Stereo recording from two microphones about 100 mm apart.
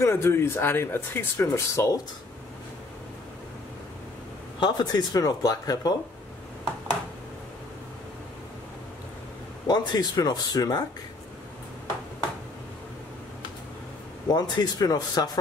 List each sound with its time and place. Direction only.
0.0 s speech: 25° left (ahead or behind)
4.6 s speech: 45° left (ahead or behind)
9.7 s speech: 40° left (ahead or behind)
14.3 s speech: 45° left (ahead or behind)